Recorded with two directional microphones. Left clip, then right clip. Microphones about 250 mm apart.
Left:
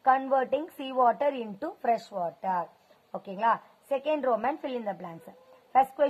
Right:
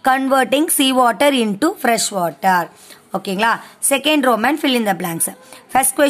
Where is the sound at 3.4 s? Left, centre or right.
Right.